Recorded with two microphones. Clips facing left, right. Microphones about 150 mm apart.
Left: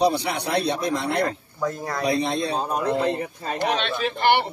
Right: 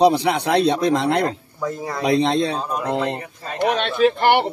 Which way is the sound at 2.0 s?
90° right.